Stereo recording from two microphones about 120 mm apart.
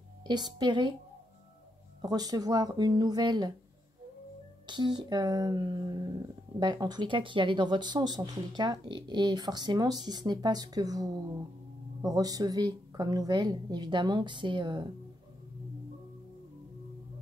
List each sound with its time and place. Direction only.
0.3 s speech: 35° right (ahead or behind)
2.0 s speech: 30° right (ahead or behind)
4.6 s speech: 35° right (ahead or behind)